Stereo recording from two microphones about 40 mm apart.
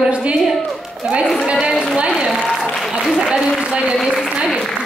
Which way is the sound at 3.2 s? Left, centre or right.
Right.